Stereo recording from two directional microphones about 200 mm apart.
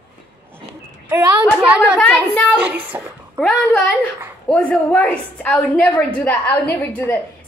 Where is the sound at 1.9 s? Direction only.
5° left (ahead or behind).